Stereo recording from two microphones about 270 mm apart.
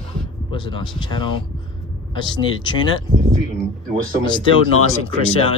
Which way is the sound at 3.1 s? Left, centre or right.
Right.